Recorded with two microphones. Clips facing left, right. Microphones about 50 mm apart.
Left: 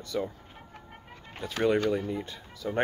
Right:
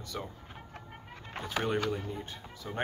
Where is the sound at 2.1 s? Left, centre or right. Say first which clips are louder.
Left 5 dB; left.